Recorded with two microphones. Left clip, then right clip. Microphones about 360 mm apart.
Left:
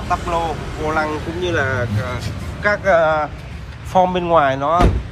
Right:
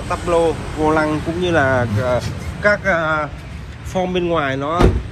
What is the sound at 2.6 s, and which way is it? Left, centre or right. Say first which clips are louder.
A man's voice: left 1 dB; centre.